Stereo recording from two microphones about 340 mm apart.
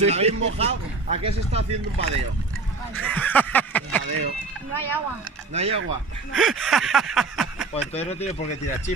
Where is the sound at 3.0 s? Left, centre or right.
Centre.